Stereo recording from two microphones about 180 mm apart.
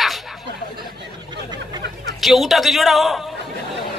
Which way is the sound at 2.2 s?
Centre (ahead or behind).